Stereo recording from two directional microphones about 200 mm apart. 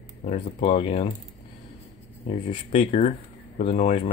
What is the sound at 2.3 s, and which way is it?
Speech, 30° left (ahead or behind).